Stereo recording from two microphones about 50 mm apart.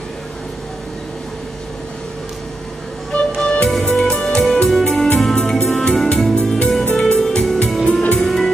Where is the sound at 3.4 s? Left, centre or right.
Centre.